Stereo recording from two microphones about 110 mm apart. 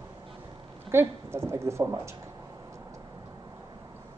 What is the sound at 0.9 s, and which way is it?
A woman's voice, 20° right (ahead or behind).